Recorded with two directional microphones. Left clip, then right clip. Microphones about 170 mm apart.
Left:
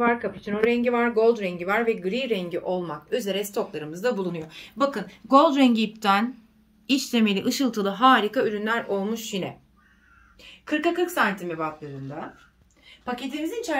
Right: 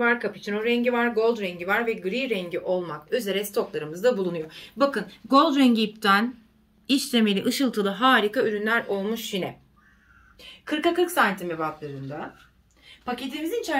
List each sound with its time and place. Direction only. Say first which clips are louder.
0.0 s speech: even; 50° left (ahead or behind)
5.3 s speech: left 2 dB; 35° left (ahead or behind); by 9.5 s 50° left (ahead or behind)
10.4 s speech: even; 30° left (ahead or behind)
13.0 s speech: even; 40° left (ahead or behind)